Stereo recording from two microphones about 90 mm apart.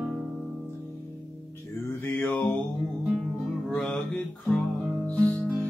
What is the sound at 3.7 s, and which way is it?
Music, 5° left (ahead or behind).